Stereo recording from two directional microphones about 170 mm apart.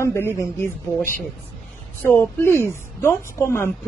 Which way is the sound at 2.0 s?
15° left (ahead or behind).